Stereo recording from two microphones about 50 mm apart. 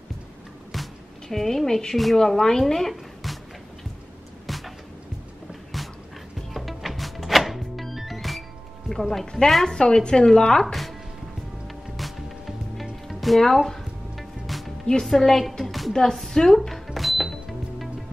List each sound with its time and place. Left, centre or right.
0.7 s music: centre
1.3 s a woman's voice: centre
4.5 s music: centre
5.5 s a sound: centre
6.5 s music: centre
9.1 s a woman's voice: centre
9.8 s a woman's voice: centre
10.6 s speech: centre
11.6 s music: centre
14.9 s a sound: centre